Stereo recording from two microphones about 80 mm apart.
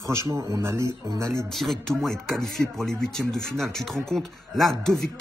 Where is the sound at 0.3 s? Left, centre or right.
Right.